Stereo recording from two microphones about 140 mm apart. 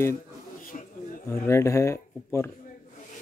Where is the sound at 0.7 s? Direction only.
65° left (ahead or behind).